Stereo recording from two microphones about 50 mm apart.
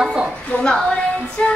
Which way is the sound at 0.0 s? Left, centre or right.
Centre.